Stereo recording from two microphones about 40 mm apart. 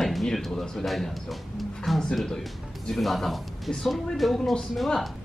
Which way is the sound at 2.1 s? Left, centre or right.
Centre.